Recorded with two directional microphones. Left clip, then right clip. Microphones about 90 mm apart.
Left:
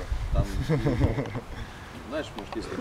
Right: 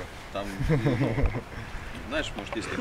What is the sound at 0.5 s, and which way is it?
Speech, 5° left (ahead or behind).